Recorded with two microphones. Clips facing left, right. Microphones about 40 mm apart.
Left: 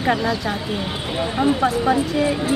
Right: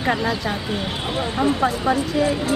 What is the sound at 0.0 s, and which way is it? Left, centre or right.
Speech, centre.